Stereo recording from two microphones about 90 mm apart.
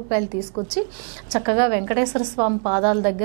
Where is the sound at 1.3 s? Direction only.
15° right (ahead or behind).